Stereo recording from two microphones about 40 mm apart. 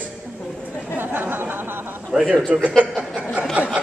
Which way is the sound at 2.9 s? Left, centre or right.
Right.